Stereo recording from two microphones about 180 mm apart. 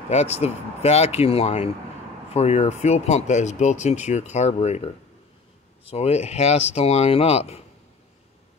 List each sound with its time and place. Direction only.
0.1 s speech: 35° left (ahead or behind)